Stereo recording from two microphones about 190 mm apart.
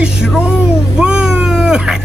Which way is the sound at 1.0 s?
5° right (ahead or behind).